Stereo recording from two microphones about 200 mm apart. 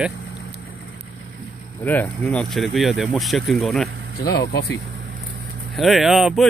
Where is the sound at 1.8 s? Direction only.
10° left (ahead or behind).